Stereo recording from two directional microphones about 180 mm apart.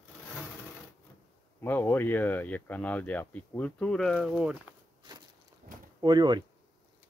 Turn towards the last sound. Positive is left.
turn(degrees=-25)  # may be behind; listen again after turning